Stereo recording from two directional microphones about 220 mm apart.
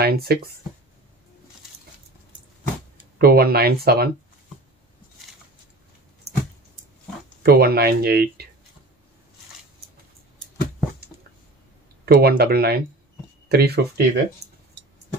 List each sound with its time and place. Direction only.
0.0 s speech: 45° right (ahead or behind)
3.2 s speech: 45° right (ahead or behind)
7.4 s speech: 45° right (ahead or behind)
12.0 s speech: 45° right (ahead or behind)